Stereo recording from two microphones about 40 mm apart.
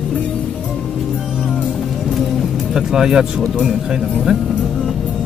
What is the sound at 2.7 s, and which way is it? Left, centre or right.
Speech, centre.